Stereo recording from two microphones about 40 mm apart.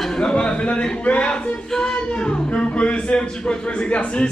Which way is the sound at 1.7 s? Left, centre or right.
Centre.